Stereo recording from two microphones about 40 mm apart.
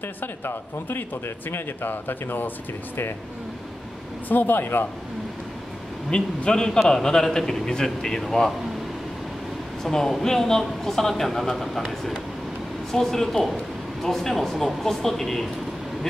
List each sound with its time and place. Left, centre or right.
0.5 s speech: left
4.3 s speech: left
6.0 s a man's voice: left; by 8.5 s centre
9.8 s a man's voice: centre
12.9 s a man's voice: centre